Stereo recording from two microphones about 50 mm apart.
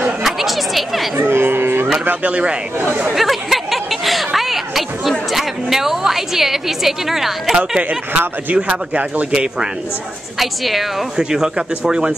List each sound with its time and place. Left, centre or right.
0.2 s chatter: centre
1.3 s a sound: right
2.2 s speech: right
3.2 s a sound: centre
5.3 s a woman's voice: centre
7.5 s speech: centre
10.4 s a woman's voice: centre
11.1 s speech: centre